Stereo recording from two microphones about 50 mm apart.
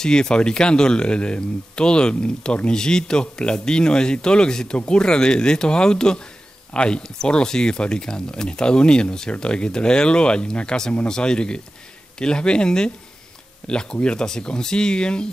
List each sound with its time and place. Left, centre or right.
0.0 s speech: centre